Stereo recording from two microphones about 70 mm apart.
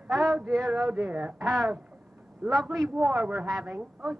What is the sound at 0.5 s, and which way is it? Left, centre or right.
A woman's voice, centre.